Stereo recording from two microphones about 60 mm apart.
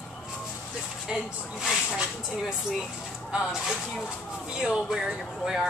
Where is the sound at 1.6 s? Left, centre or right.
Centre.